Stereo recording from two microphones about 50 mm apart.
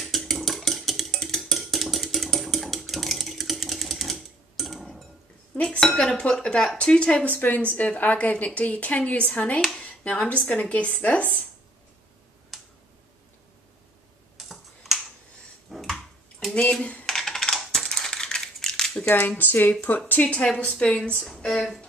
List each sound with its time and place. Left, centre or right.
0.0 s a sound: centre
5.8 s dishes: centre
6.1 s a woman's voice: centre; by 11.4 s left
14.3 s computer keyboard: centre
15.7 s bathtub: centre
17.0 s typing: centre
17.7 s coin: centre
19.0 s speech: left
20.1 s a woman's voice: left
21.5 s speech: centre